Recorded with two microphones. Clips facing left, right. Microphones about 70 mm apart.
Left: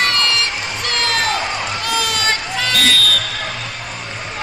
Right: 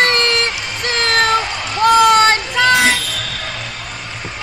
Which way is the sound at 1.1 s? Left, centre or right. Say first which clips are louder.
Right 6 dB; right.